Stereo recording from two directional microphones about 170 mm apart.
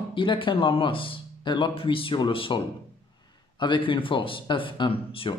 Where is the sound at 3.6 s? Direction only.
30° left (ahead or behind).